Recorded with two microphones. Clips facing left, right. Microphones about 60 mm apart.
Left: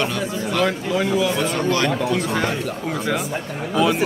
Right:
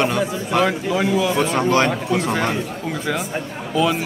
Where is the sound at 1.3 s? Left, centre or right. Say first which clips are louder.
Right 3 dB; right.